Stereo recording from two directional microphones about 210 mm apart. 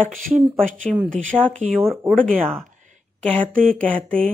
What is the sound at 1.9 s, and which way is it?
Speech, centre (ahead or behind).